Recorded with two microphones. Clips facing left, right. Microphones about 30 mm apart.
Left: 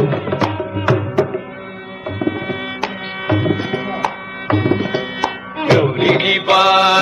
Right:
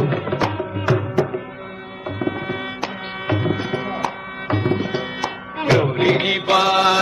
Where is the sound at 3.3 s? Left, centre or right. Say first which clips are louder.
Left 4 dB; centre.